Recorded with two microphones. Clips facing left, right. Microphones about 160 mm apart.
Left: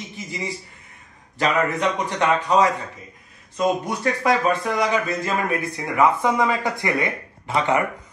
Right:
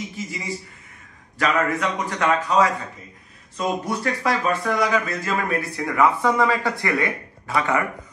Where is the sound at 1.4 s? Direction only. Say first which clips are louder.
Left 1 dB; 25° left (ahead or behind).